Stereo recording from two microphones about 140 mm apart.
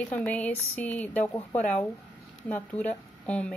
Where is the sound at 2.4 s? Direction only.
10° left (ahead or behind).